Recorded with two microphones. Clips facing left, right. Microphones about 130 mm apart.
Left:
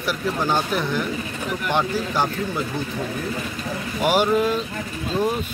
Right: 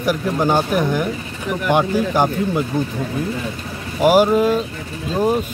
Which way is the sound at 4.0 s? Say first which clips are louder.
Right 7 dB; 40° right (ahead or behind).